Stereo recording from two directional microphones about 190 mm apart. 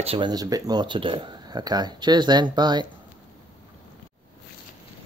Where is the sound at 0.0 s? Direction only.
25° right (ahead or behind).